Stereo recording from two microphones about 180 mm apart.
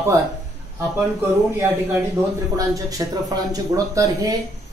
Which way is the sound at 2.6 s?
20° right (ahead or behind).